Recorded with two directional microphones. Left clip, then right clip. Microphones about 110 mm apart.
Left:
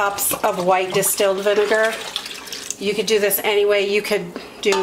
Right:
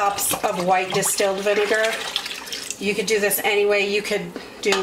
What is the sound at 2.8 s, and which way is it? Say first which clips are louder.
Speech: left 3 dB; 25° left (ahead or behind).